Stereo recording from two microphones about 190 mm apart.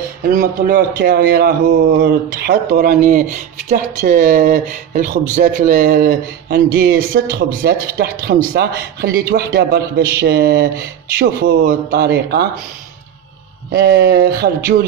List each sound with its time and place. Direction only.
0.3 s a man's voice: 45° right (ahead or behind)
13.7 s speech: 65° right (ahead or behind)